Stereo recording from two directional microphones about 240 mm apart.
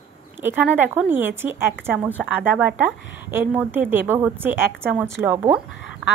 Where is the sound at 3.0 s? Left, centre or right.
Left.